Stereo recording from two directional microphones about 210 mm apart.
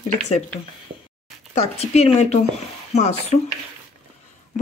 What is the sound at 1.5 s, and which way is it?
Speech, 30° left (ahead or behind).